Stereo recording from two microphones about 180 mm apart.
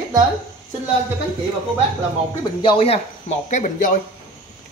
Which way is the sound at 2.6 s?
30° left (ahead or behind).